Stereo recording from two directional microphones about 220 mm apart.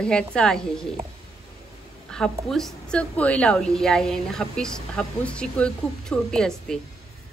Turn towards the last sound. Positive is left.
turn(degrees=0)  # may be behind; listen again after turning